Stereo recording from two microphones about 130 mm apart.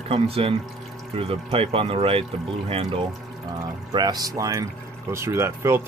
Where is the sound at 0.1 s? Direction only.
45° right (ahead or behind).